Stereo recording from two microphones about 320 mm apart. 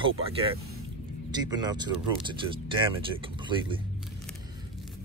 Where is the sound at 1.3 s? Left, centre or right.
Centre.